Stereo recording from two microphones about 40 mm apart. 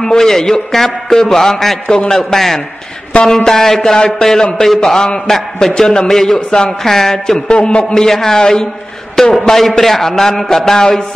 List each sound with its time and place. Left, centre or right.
0.0 s speech: centre
7.9 s speech: centre
9.1 s a sound: centre
9.6 s speech: centre